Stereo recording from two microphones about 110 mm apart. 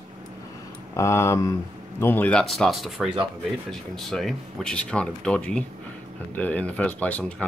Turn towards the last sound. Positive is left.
turn(degrees=15)  # may be behind; listen again after turning